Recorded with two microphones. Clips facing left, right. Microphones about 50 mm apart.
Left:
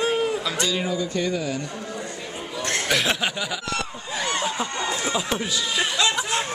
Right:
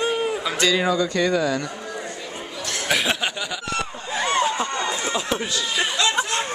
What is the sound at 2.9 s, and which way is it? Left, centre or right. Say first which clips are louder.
Speech: right 2 dB; centre.